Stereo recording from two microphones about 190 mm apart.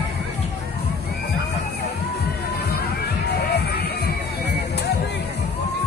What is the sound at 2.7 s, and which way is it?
Music, 55° left (ahead or behind).